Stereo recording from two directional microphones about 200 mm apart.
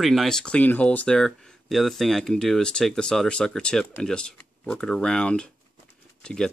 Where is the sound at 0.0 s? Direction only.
Centre (ahead or behind).